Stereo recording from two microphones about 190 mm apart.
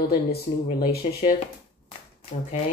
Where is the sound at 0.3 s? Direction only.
55° left (ahead or behind).